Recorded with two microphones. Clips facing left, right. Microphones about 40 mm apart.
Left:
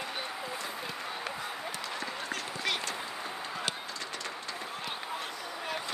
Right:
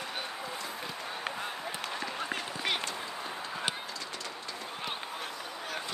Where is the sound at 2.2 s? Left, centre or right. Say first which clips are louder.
Left 1 dB; centre.